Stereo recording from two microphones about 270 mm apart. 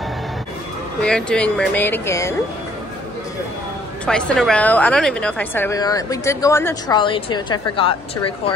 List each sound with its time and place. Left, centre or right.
1.0 s speech: centre
4.0 s a woman's voice: centre